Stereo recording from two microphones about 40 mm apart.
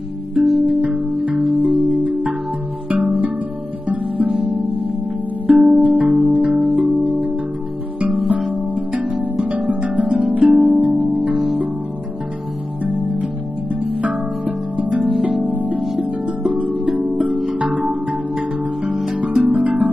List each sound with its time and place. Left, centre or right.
0.7 s music: right
8.3 s music: right
8.5 s music: right
10.3 s music: right
11.3 s music: right
12.8 s music: right
19.0 s music: right